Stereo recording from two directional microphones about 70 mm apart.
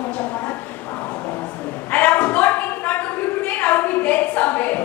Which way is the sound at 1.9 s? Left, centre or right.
Centre.